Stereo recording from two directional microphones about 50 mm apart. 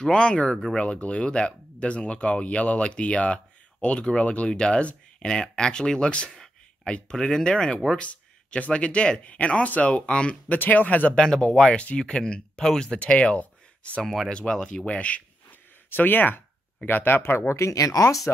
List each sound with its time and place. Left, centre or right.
0.0 s speech: centre
8.0 s speech: left
10.6 s speech: left
11.1 s speech: centre
14.0 s speech: centre
14.3 s speech: centre
15.9 s speech: left